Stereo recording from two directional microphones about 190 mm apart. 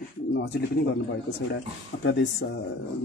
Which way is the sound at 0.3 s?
65° left (ahead or behind).